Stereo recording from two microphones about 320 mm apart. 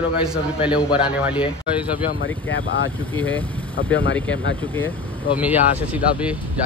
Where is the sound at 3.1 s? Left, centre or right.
Centre.